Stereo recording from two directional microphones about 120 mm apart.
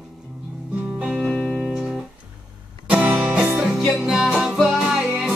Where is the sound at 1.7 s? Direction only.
5° right (ahead or behind).